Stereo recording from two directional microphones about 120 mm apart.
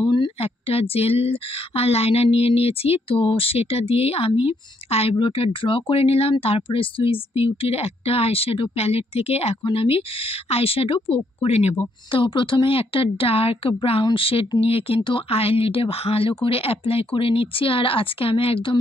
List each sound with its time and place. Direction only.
0.4 s a woman's voice: 55° left (ahead or behind)
9.6 s speech: 45° left (ahead or behind)
12.1 s speech: 45° left (ahead or behind)